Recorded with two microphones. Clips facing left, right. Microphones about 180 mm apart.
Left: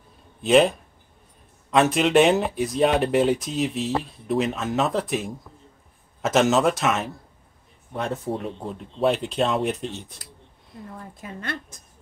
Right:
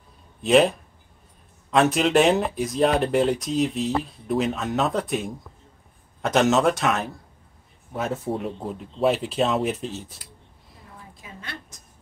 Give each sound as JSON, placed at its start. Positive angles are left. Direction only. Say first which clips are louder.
{"t": 0.4, "sound": "speech", "louder": "even", "side_deg": 0}
{"t": 11.1, "sound": "a woman's voice", "louder": "left 8 dB", "side_deg": 50}